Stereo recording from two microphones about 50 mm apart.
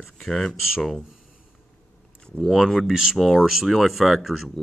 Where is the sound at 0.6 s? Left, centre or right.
Centre.